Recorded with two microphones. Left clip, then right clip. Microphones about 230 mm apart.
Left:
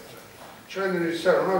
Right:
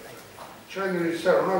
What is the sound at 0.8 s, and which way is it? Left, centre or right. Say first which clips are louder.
Speech: left 1 dB; centre.